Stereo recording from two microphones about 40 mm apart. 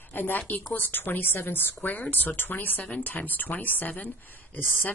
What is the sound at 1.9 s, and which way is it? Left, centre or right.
Speech, left.